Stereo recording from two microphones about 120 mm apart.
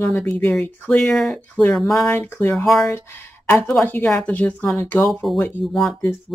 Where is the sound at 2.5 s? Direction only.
Centre (ahead or behind).